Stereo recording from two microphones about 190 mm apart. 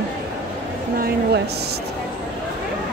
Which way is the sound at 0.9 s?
55° right (ahead or behind).